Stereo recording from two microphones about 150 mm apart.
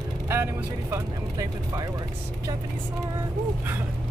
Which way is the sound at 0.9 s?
20° right (ahead or behind).